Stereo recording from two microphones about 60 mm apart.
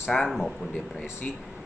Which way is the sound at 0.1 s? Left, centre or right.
Centre.